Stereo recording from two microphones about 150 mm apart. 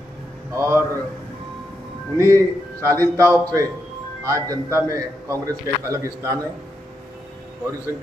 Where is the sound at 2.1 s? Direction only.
20° right (ahead or behind).